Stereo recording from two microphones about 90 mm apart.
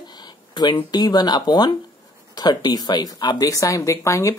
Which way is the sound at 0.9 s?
50° left (ahead or behind).